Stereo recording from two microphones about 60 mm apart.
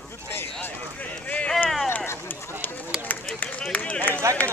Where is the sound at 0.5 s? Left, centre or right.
Left.